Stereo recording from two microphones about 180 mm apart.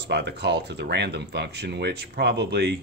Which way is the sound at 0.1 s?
70° right (ahead or behind).